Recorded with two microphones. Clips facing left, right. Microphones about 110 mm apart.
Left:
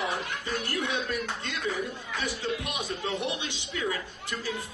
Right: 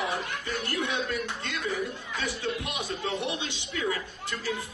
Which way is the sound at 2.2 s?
15° left (ahead or behind).